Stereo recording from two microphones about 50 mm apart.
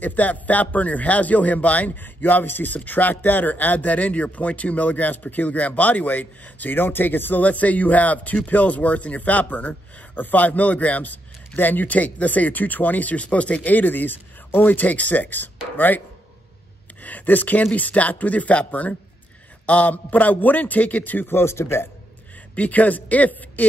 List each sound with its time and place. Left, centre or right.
0.0 s speech: left
7.4 s speech: left
13.7 s speech: left
17.0 s speech: left
22.6 s speech: left